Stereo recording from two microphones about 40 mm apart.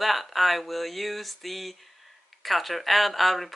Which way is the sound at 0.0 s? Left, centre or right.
Centre.